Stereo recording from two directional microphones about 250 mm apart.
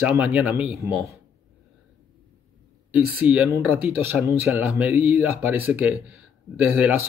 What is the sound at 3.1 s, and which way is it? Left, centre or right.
Speech, centre.